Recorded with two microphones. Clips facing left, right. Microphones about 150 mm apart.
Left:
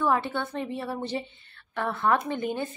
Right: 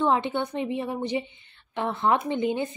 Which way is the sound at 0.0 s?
20° right (ahead or behind).